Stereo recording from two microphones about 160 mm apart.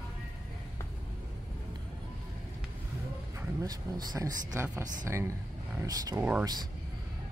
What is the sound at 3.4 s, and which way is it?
Speech, 25° right (ahead or behind).